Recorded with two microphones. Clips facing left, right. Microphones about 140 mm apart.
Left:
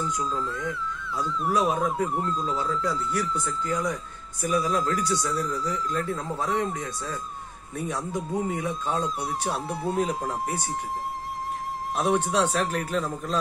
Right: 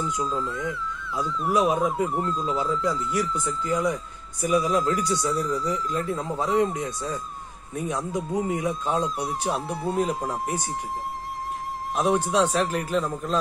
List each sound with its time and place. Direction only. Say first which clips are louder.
0.0 s speech: right 1 dB; centre (ahead or behind)
6.7 s speech: right 3 dB; 20° right (ahead or behind); by 10.5 s centre (ahead or behind)
11.9 s speech: right 2 dB; centre (ahead or behind)